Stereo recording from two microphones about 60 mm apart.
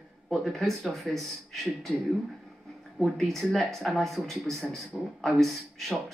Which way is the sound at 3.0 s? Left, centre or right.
Centre.